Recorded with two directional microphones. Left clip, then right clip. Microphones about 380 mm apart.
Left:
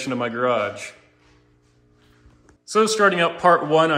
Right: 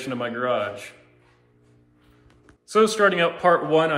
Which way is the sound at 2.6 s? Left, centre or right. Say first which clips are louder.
Left 1 dB; centre.